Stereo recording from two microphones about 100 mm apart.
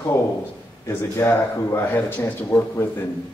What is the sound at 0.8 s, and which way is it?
Speech, 30° left (ahead or behind).